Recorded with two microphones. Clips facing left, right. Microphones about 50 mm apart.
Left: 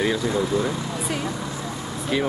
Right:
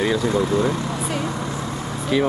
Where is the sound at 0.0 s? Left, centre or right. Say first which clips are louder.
Right 3 dB; centre.